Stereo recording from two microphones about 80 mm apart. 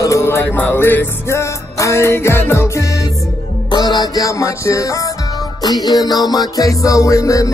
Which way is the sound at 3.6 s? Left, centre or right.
Left.